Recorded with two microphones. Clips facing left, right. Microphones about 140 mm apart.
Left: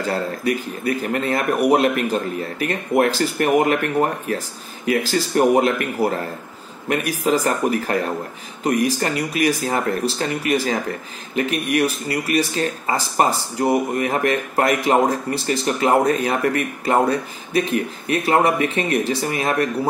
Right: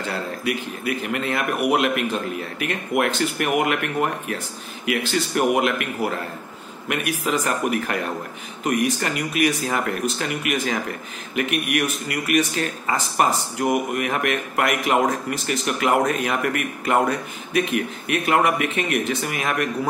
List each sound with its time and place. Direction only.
0.0 s speech: 40° left (ahead or behind)